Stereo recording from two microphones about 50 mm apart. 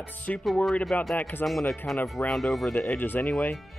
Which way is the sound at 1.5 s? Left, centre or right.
Centre.